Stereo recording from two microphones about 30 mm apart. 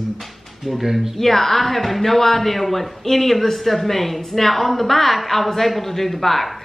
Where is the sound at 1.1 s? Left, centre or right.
Centre.